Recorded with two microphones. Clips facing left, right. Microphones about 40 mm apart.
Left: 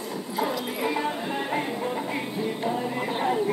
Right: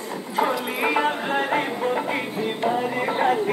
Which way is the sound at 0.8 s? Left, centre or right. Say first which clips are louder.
Right 6 dB; right.